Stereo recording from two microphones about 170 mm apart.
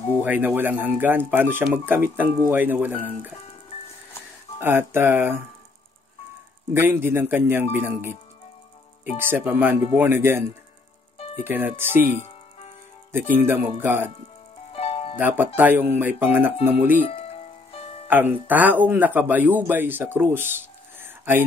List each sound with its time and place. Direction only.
0.2 s speech: 10° right (ahead or behind)
4.6 s speech: 15° right (ahead or behind)
6.7 s speech: 10° right (ahead or behind)
9.2 s speech: 10° right (ahead or behind)
11.4 s speech: 10° right (ahead or behind)
13.5 s speech: 15° right (ahead or behind)
14.7 s music: 35° left (ahead or behind)
15.1 s speech: 10° right (ahead or behind)
18.0 s speech: 10° right (ahead or behind)